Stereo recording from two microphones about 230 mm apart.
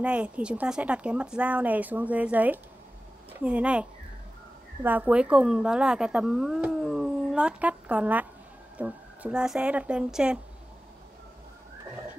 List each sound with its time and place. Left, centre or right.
0.0 s speech: centre
4.8 s speech: centre